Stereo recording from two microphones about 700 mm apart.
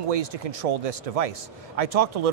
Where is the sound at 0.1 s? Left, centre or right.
Right.